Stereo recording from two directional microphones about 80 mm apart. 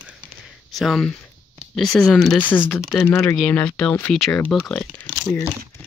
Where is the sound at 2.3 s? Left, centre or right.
Left.